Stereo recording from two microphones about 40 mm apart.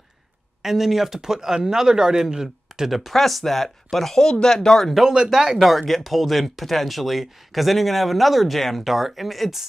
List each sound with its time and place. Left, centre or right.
0.6 s speech: centre
5.0 s speech: centre
5.6 s speech: centre